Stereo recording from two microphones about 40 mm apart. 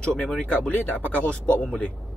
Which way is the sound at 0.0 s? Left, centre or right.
Left.